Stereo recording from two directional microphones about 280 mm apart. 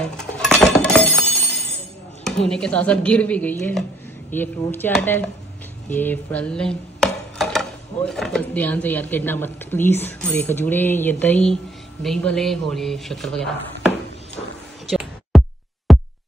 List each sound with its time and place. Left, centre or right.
0.0 s coin: centre
2.4 s speech: centre
5.9 s a sound: centre
12.0 s speech: centre
14.9 s music: centre
15.9 s drum machine: centre